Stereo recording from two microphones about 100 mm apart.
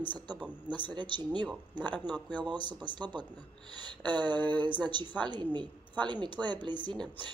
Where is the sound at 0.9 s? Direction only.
50° right (ahead or behind).